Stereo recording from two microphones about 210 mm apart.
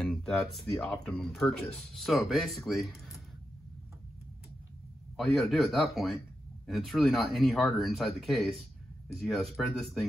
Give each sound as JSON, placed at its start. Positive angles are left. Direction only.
{"t": 0.0, "sound": "speech", "side_deg": 0}
{"t": 5.1, "sound": "speech", "side_deg": 0}